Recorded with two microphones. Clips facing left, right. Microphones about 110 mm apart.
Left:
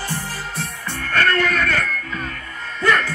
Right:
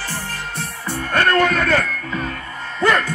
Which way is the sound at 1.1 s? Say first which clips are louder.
Right 3 dB; 25° right (ahead or behind).